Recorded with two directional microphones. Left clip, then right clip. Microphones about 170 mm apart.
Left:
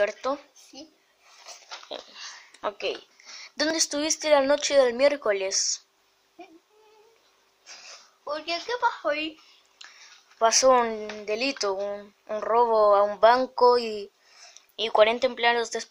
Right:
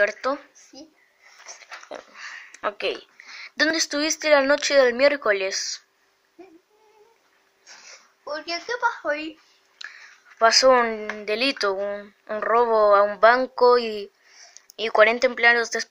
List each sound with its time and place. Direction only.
0.0 s speech: 5° left (ahead or behind)
1.9 s a sound: 15° left (ahead or behind)
3.3 s speech: 10° left (ahead or behind)
7.6 s speech: 30° left (ahead or behind)
9.8 s a sound: 5° left (ahead or behind)
10.4 s speech: 5° left (ahead or behind)